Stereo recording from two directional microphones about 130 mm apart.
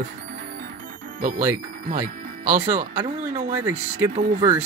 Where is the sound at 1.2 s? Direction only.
75° right (ahead or behind).